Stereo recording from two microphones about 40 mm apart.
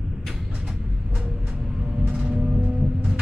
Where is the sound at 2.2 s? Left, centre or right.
Right.